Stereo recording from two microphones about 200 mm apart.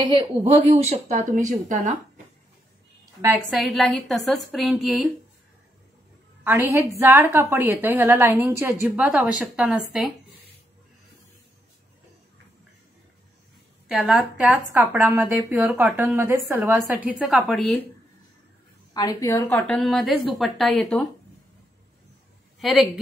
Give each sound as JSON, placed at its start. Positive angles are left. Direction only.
{"t": 0.0, "sound": "a woman's voice", "side_deg": -25}
{"t": 3.4, "sound": "a woman's voice", "side_deg": 0}
{"t": 6.4, "sound": "a woman's voice", "side_deg": -15}
{"t": 13.8, "sound": "a woman's voice", "side_deg": -5}
{"t": 18.9, "sound": "a woman's voice", "side_deg": 15}
{"t": 22.6, "sound": "a woman's voice", "side_deg": 0}